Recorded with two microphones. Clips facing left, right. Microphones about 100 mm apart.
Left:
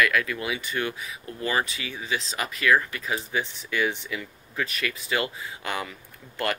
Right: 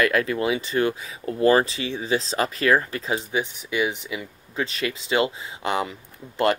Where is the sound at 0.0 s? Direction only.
35° right (ahead or behind).